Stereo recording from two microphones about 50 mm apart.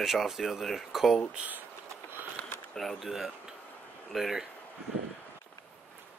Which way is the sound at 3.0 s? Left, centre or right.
Centre.